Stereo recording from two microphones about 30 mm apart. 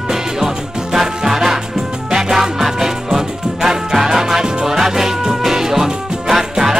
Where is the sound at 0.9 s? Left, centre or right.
Centre.